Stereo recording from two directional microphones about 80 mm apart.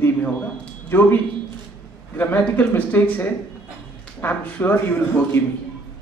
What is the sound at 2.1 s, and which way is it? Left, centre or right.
Speech, left.